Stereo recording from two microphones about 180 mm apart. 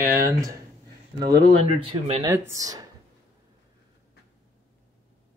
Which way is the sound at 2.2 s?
15° right (ahead or behind).